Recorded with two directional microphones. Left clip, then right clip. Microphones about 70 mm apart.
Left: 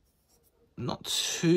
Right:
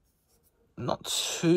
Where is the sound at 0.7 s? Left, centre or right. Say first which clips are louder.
Right 1 dB; left.